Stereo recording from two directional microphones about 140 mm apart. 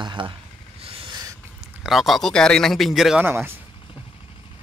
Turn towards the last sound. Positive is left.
turn(degrees=-15)  # may be behind; listen again after turning